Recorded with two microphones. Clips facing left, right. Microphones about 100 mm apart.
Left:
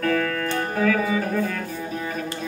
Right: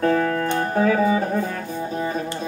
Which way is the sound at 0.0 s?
30° right (ahead or behind).